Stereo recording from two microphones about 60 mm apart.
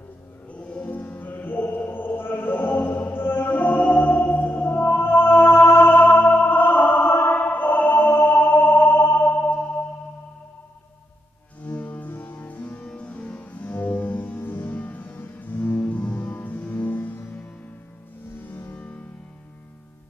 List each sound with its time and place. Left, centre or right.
0.5 s music: centre; by 6.0 s left
6.0 s music: left
7.4 s music: left
9.3 s music: left
11.6 s music: left
18.8 s music: left